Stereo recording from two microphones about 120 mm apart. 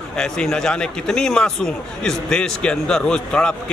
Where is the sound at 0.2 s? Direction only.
5° left (ahead or behind).